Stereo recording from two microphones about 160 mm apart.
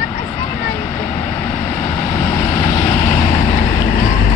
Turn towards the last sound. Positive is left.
turn(degrees=55)  # may be behind; listen again after turning